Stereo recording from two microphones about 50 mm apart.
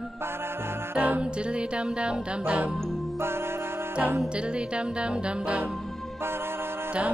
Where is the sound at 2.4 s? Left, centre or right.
Right.